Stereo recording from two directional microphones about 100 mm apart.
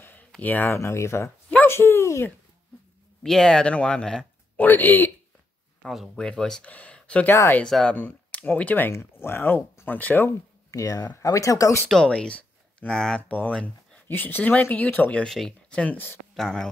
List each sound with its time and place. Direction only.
0.0 s a sound: 20° left (ahead or behind)
0.4 s speech: 20° left (ahead or behind)
3.2 s speech: 5° left (ahead or behind)
4.6 s speech: 20° left (ahead or behind)
5.8 s speech: centre (ahead or behind); by 10.3 s 20° left (ahead or behind)
10.7 s speech: 35° left (ahead or behind)
11.9 s speech: 10° left (ahead or behind)
15.2 s speech: 5° left (ahead or behind)
16.3 s speech: centre (ahead or behind)